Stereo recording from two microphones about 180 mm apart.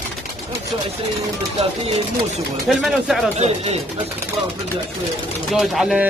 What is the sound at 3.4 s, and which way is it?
Speech, 35° right (ahead or behind).